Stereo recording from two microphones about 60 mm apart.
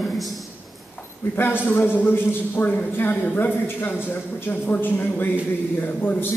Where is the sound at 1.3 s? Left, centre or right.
Left.